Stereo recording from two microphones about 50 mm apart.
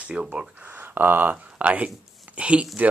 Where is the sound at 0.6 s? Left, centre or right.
Right.